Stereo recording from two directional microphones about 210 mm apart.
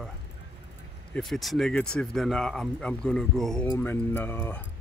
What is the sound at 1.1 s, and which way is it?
Speech, centre (ahead or behind).